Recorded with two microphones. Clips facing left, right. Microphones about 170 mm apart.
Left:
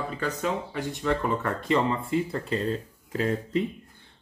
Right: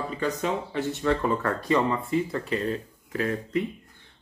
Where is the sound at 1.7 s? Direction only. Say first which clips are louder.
Even; 30° left (ahead or behind).